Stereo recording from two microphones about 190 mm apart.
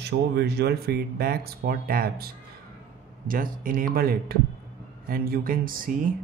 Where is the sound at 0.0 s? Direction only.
60° right (ahead or behind).